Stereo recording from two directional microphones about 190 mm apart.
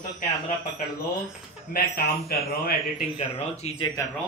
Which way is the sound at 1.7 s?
50° left (ahead or behind).